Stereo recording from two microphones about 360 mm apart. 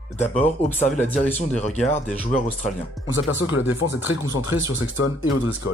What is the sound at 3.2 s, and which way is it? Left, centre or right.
Speech, left.